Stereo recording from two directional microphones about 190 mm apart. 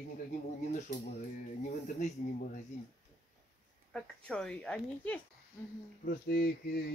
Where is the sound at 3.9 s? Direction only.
5° left (ahead or behind).